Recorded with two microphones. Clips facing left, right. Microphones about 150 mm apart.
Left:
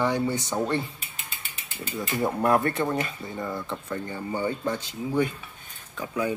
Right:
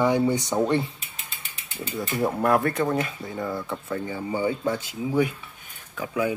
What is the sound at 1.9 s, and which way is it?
Speech, 5° right (ahead or behind).